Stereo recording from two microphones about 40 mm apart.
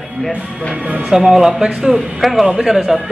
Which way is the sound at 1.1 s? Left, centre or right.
Centre.